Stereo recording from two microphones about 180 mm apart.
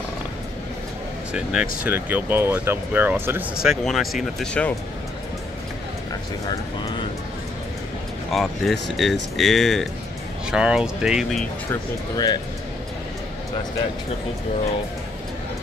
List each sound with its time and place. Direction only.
1.3 s speech: 5° right (ahead or behind)
8.3 s speech: centre (ahead or behind)
11.7 s speech: 20° left (ahead or behind)